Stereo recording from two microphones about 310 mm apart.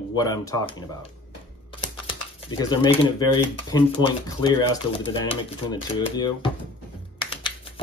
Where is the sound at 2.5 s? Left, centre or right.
Centre.